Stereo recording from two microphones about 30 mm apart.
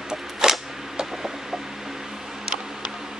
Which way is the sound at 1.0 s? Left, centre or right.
Centre.